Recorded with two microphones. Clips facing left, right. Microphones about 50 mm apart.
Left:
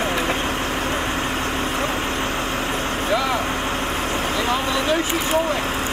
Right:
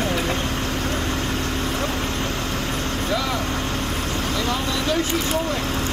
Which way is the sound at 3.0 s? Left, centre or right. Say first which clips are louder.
Left 4 dB; left.